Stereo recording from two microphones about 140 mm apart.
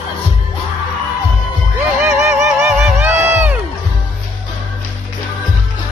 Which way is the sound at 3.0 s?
15° right (ahead or behind).